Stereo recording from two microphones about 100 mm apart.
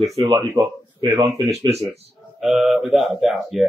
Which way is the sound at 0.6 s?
40° right (ahead or behind).